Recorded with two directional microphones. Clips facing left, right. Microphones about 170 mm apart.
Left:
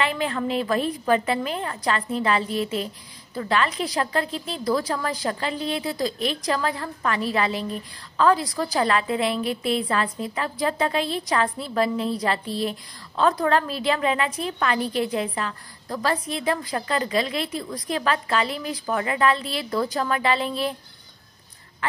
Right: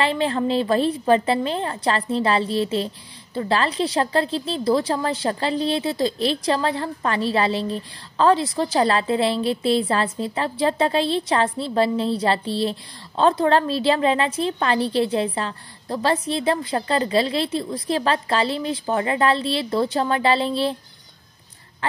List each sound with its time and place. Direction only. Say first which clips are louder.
0.0 s a woman's voice: right 4 dB; 30° right (ahead or behind)